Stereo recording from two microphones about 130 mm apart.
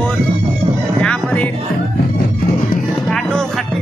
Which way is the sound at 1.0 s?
10° left (ahead or behind).